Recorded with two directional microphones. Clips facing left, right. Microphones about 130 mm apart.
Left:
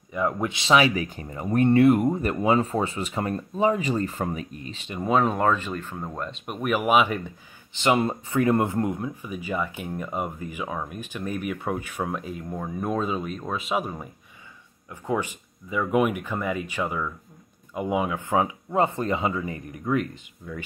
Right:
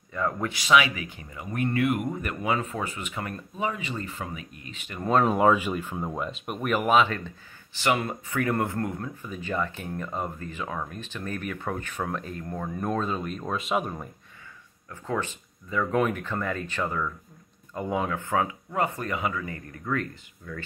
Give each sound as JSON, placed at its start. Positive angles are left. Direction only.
{"t": 0.1, "sound": "speech", "side_deg": 15}
{"t": 5.0, "sound": "speech", "side_deg": 0}
{"t": 14.9, "sound": "speech", "side_deg": 15}